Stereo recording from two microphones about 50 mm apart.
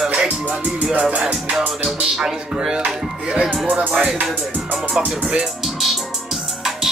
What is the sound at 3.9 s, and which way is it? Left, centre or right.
Music, right.